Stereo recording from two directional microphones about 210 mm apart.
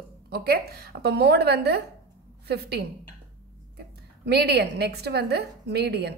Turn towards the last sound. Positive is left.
turn(degrees=-50)  # may be behind; listen again after turning